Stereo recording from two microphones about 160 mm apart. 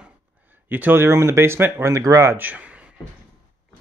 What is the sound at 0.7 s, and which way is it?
Speech, 10° right (ahead or behind).